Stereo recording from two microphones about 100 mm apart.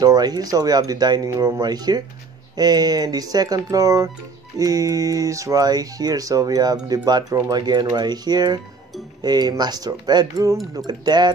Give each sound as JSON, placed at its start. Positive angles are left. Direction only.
{"t": 0.0, "sound": "speech", "side_deg": -40}